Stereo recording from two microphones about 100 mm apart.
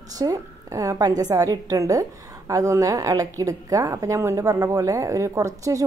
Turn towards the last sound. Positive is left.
turn(degrees=-30)  # may be behind; listen again after turning